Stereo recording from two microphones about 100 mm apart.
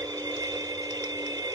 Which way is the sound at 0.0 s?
35° right (ahead or behind).